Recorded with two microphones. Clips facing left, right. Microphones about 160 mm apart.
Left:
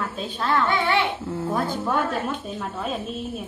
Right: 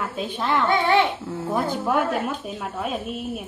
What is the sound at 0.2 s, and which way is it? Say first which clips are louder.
Speech: even; 15° right (ahead or behind).